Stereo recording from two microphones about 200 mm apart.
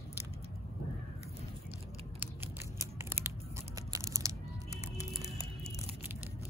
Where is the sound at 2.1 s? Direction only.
10° right (ahead or behind).